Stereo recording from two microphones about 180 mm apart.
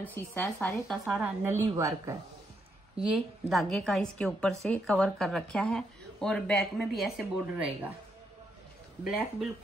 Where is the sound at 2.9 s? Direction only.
5° right (ahead or behind).